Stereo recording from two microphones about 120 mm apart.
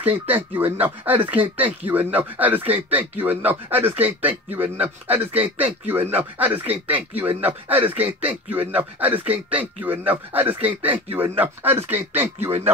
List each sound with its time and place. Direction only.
0.0 s speech: 15° right (ahead or behind)